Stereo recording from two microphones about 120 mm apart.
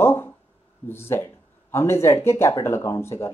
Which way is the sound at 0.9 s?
20° left (ahead or behind).